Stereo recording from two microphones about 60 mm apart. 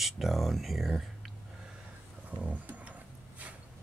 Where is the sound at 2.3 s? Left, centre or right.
Right.